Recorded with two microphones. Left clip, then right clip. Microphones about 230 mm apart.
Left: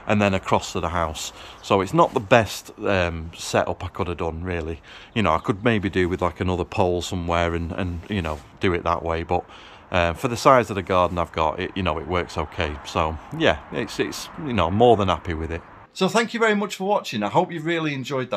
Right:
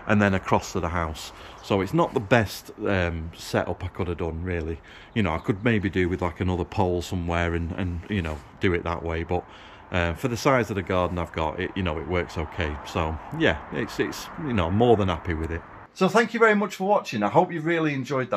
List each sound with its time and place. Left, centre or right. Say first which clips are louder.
0.0 s speech: left 2 dB; centre
16.0 s speech: right 1 dB; centre